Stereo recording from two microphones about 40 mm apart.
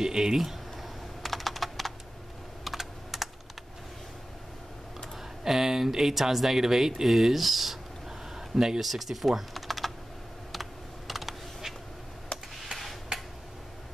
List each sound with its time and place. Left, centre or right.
0.0 s speech: centre
1.2 s computer keyboard: centre
2.6 s typing: centre
5.1 s speech: centre
8.4 s a sound: centre
8.8 s speech: centre
10.5 s computer keyboard: centre
12.3 s a sound: left